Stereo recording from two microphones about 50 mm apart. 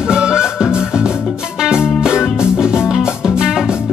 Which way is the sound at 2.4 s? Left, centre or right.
Centre.